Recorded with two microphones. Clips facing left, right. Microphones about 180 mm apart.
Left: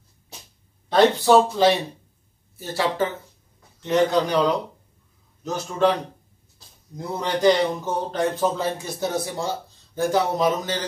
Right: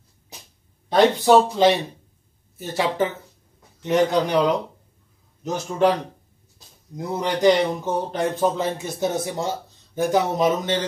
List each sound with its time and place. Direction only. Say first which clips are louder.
0.8 s speech: right 1 dB; 15° right (ahead or behind)
7.0 s speech: right 1 dB; 15° right (ahead or behind)